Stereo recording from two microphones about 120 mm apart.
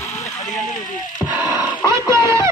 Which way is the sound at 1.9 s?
25° right (ahead or behind).